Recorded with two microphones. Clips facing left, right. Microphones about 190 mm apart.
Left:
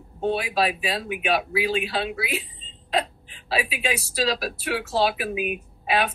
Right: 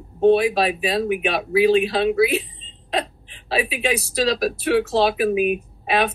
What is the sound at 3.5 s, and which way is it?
Speech, 40° right (ahead or behind).